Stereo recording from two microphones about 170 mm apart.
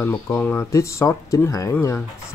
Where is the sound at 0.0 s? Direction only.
10° left (ahead or behind).